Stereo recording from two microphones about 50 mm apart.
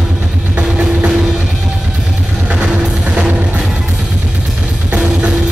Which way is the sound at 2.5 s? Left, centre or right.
Right.